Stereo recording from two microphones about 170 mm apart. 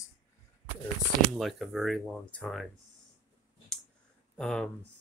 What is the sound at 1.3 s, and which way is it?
Speech, centre (ahead or behind).